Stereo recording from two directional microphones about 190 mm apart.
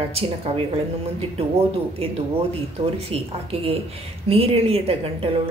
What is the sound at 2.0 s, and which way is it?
A woman's voice, 30° right (ahead or behind).